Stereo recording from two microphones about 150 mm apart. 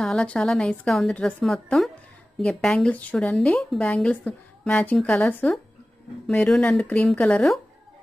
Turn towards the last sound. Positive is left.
turn(degrees=0)  # may be behind; listen again after turning